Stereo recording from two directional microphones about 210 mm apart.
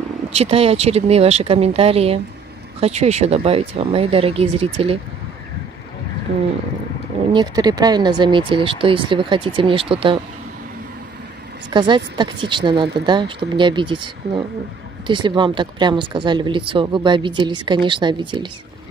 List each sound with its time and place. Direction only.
0.3 s speech: 30° right (ahead or behind)
7.3 s speech: 20° right (ahead or behind)
11.7 s speech: 20° right (ahead or behind)